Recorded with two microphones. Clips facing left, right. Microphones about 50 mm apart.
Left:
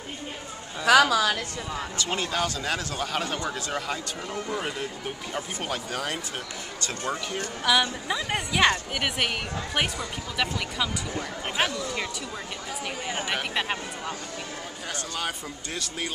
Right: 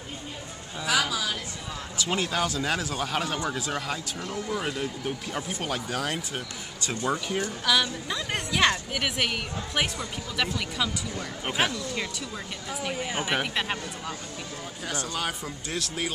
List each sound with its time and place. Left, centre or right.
0.8 s a sound: left
2.0 s a woman's voice: centre
7.1 s speech: centre
7.6 s a woman's voice: centre
12.8 s a woman's voice: centre